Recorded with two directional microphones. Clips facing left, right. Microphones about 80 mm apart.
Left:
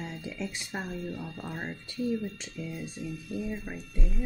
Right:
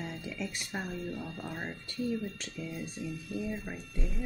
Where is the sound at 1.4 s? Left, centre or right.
Centre.